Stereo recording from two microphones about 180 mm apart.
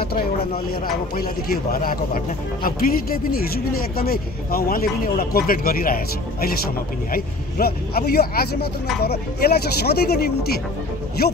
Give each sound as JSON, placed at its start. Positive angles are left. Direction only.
{"t": 0.0, "sound": "speech", "side_deg": 60}